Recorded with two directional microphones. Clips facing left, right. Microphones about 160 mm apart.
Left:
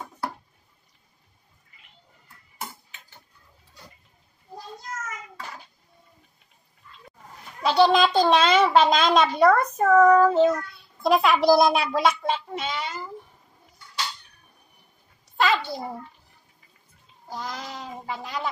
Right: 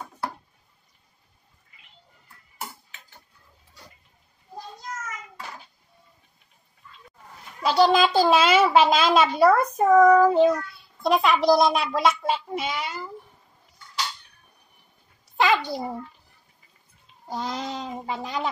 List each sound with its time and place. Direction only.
7.6 s a child's voice: centre (ahead or behind)
11.0 s a child's voice: centre (ahead or behind)
15.3 s a sound: 15° right (ahead or behind)
17.3 s speech: 25° right (ahead or behind)